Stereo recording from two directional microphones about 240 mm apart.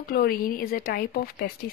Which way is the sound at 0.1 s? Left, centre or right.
Left.